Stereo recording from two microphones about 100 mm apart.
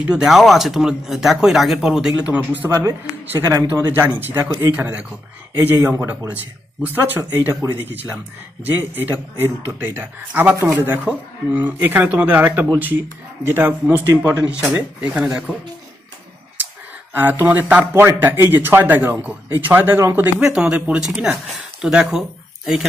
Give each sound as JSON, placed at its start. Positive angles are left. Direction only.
{"t": 0.0, "sound": "speech", "side_deg": -5}
{"t": 2.3, "sound": "speech", "side_deg": -15}
{"t": 2.7, "sound": "a man's voice", "side_deg": -35}
{"t": 17.1, "sound": "a man's voice", "side_deg": -20}
{"t": 20.4, "sound": "speech", "side_deg": -10}